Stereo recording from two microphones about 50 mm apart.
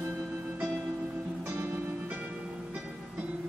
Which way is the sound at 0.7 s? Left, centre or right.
Right.